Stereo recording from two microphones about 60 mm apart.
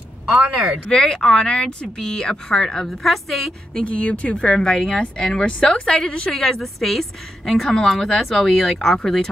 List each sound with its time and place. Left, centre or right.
0.3 s speech: right
0.8 s a woman's voice: centre
3.7 s a woman's voice: centre
6.3 s a woman's voice: centre